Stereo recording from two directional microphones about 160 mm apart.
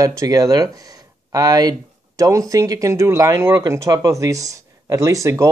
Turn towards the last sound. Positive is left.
turn(degrees=-20)  # may be behind; listen again after turning